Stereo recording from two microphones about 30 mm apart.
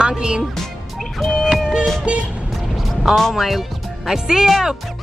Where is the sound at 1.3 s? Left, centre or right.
Centre.